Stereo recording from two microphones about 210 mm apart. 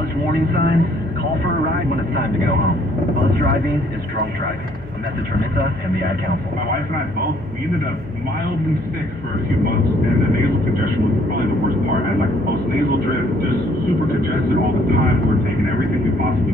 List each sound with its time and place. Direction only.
0.3 s speech: 50° right (ahead or behind)